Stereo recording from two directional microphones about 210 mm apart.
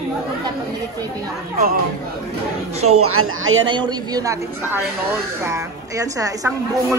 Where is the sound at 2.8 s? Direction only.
90° right; by 3.7 s 70° right (ahead or behind).